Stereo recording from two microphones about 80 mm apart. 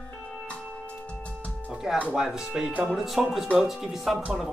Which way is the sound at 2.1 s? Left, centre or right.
Centre.